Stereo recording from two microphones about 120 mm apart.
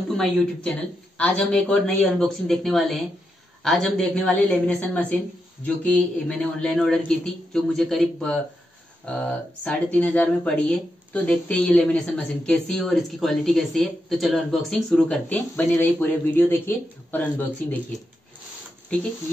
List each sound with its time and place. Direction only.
0.2 s speech: 5° left (ahead or behind)
9.7 s speech: 10° left (ahead or behind)